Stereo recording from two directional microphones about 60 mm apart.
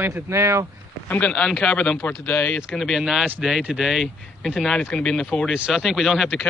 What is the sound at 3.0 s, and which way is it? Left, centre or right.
Speech, centre.